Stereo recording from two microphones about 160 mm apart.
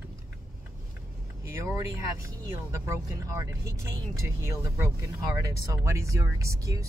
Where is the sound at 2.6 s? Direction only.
15° right (ahead or behind).